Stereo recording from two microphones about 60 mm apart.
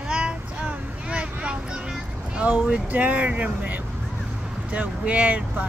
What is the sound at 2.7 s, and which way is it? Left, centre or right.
Speech, right.